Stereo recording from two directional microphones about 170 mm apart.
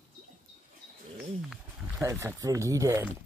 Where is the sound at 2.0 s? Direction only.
15° right (ahead or behind).